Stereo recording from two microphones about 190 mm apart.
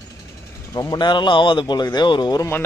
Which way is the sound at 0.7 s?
20° left (ahead or behind).